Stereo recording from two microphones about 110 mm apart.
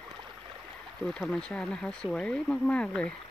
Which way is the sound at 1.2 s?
10° left (ahead or behind).